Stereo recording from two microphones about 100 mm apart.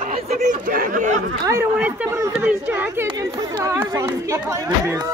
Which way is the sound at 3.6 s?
25° right (ahead or behind).